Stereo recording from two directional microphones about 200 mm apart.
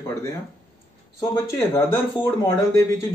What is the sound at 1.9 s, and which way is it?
Speech, 10° left (ahead or behind).